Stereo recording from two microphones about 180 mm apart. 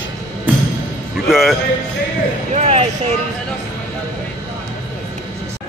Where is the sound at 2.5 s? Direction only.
35° right (ahead or behind).